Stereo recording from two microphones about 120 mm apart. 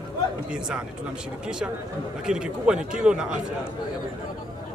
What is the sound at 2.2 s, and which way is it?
Speech, 5° right (ahead or behind).